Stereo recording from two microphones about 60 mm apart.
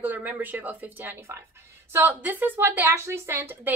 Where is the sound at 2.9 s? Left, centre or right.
Right.